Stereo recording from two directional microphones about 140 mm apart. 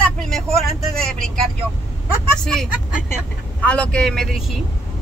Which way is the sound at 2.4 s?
5° left (ahead or behind).